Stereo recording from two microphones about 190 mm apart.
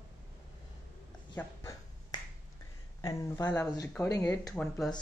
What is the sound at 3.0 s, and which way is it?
Speech, 20° left (ahead or behind).